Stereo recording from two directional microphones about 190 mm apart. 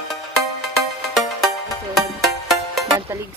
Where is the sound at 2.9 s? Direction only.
15° right (ahead or behind).